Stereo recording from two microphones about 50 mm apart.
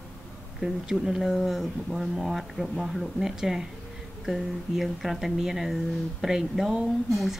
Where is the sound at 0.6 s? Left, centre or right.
Centre.